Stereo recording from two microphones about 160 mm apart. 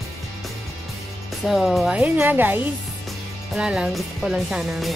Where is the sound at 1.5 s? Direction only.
Centre (ahead or behind).